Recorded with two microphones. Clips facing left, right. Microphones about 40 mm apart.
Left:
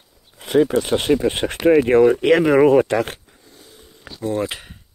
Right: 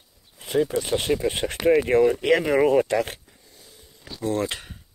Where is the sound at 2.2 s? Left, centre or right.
Left.